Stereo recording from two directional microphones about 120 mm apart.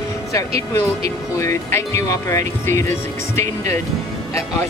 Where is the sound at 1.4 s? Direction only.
25° left (ahead or behind).